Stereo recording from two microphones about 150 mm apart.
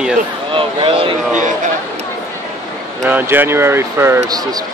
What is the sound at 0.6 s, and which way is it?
Speech, 35° right (ahead or behind).